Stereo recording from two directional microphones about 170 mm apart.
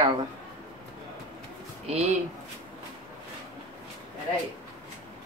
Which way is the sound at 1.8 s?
40° right (ahead or behind).